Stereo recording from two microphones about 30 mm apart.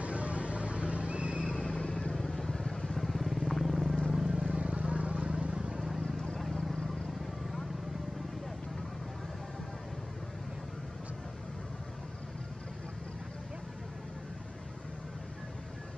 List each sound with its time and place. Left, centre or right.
0.0 s vehicle: right
1.9 s vehicle: left
2.1 s vehicle: centre
4.1 s vehicle: centre
4.5 s vehicle: right
5.6 s vehicle: centre